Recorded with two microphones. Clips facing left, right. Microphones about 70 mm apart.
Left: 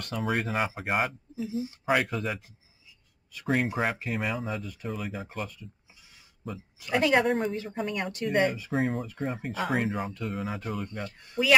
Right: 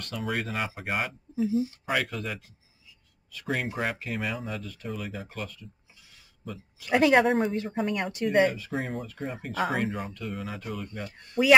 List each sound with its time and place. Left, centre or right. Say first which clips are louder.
0.2 s speech: left 3 dB; centre
1.5 s speech: right 4 dB; left
1.9 s speech: left 3 dB; centre
3.7 s speech: left 2 dB; centre
6.9 s speech: right 3 dB; centre
7.2 s speech: right 3 dB; centre
11.1 s speech: right 4 dB; centre